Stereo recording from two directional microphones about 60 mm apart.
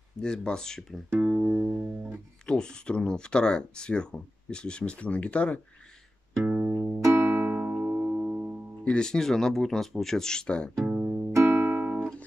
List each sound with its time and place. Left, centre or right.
0.2 s speech: centre
1.1 s music: right
1.4 s music: right
2.4 s speech: centre
6.4 s music: right
6.7 s music: right
7.2 s music: right
8.8 s speech: centre
10.9 s music: right
11.1 s music: right